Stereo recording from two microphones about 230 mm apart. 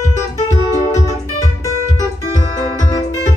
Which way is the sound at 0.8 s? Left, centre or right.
Left.